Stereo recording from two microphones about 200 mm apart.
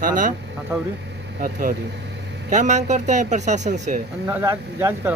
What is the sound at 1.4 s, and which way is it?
Speech, 45° right (ahead or behind).